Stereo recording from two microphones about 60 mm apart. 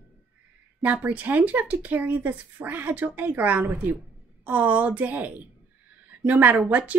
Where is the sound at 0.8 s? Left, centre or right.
Right.